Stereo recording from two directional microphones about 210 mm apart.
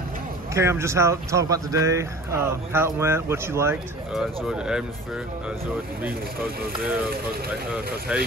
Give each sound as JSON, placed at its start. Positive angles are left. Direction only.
{"t": 0.6, "sound": "speech", "side_deg": -15}
{"t": 4.1, "sound": "speech", "side_deg": 0}
{"t": 6.8, "sound": "speech", "side_deg": -5}
{"t": 7.1, "sound": "speech", "side_deg": -45}